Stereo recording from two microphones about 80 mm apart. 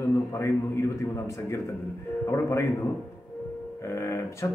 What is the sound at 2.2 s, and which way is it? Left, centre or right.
Speech, left.